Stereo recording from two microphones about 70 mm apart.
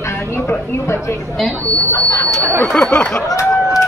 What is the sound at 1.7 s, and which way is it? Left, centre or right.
Speech, left.